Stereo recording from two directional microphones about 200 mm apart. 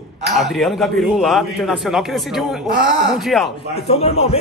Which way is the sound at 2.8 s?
65° right (ahead or behind).